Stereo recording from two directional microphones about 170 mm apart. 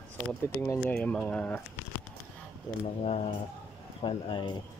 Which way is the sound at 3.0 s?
35° left (ahead or behind).